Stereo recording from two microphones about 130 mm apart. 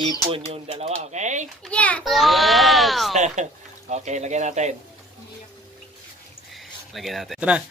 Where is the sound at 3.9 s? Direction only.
65° right (ahead or behind).